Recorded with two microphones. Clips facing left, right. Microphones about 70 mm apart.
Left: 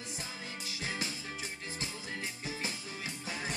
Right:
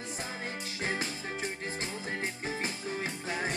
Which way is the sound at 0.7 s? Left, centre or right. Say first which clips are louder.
Right 4 dB; right.